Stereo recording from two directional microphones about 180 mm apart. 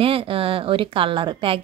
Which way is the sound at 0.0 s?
30° right (ahead or behind).